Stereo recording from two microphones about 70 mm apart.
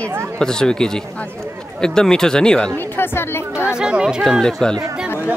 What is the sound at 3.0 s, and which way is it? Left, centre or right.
Speech, left.